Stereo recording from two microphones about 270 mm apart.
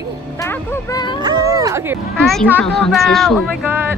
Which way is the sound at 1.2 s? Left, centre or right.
Centre.